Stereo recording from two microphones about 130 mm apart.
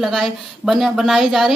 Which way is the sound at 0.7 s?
Centre (ahead or behind).